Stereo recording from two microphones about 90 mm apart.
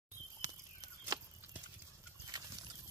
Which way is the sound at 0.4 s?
40° right (ahead or behind).